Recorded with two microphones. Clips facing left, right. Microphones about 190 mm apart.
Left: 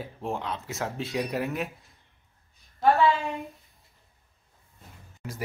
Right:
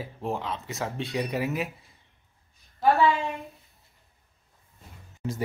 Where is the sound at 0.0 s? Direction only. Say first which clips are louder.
Right 1 dB; centre (ahead or behind).